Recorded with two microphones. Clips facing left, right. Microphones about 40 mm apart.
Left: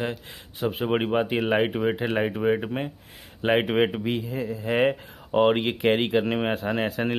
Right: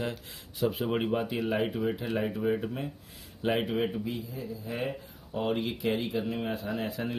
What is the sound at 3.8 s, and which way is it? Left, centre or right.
Speech, left.